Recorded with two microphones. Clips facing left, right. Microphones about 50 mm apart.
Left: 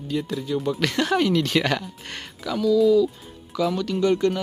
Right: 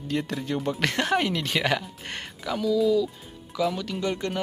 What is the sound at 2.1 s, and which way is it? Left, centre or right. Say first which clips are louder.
Speech: left 1 dB; right.